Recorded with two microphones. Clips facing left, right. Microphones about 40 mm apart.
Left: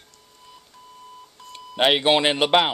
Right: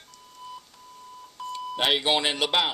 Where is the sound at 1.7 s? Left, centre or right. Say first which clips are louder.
Left 6 dB; left.